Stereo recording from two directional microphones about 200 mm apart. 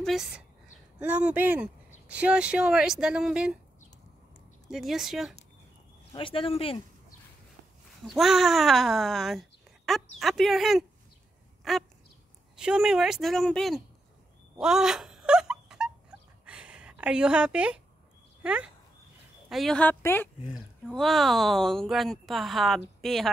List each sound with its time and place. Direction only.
0.0 s speech: centre (ahead or behind)
4.6 s speech: centre (ahead or behind)
6.1 s speech: 25° left (ahead or behind)
8.1 s a child's voice: centre (ahead or behind)
11.6 s a sound: centre (ahead or behind)
12.5 s speech: 5° right (ahead or behind)
14.6 s wail: 5° right (ahead or behind)
18.4 s speech: 5° right (ahead or behind); by 20.2 s 10° left (ahead or behind)
20.4 s speech: centre (ahead or behind)